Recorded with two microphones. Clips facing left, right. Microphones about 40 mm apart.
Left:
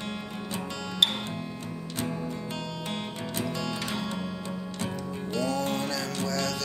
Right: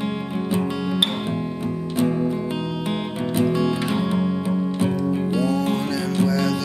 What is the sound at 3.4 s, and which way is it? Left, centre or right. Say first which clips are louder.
Music: right 12 dB; centre.